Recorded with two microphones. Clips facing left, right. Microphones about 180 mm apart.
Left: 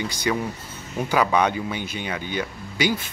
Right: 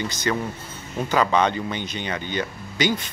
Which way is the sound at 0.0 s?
10° left (ahead or behind).